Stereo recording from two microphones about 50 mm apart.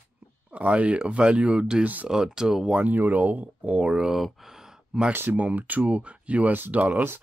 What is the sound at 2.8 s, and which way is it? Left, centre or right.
Speech, right.